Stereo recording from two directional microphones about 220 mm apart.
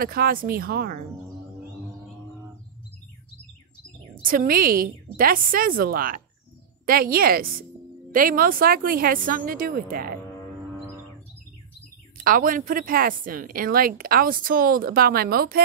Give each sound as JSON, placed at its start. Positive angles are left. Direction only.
{"t": 0.0, "sound": "speech", "side_deg": -40}
{"t": 4.2, "sound": "a woman's voice", "side_deg": -40}
{"t": 12.2, "sound": "a woman's voice", "side_deg": -40}